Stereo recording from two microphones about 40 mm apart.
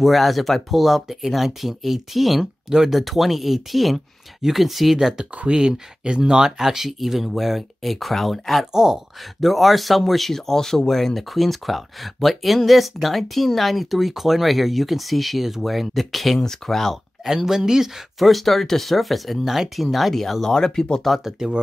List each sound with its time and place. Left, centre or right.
0.0 s speech: centre
4.9 s speech: centre
6.6 s speech: centre
8.7 s speech: centre
9.4 s speech: centre
16.9 s speech: centre
18.2 s speech: centre
20.5 s speech: centre
21.0 s speech: centre